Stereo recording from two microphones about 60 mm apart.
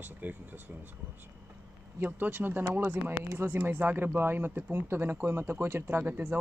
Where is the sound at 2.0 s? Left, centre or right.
Right.